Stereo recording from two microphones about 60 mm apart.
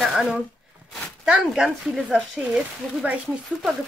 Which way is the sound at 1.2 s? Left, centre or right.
Centre.